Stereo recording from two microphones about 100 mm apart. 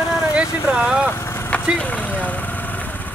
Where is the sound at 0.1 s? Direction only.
35° left (ahead or behind).